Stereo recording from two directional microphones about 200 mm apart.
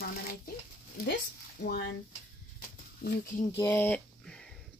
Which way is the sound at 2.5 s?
45° left (ahead or behind).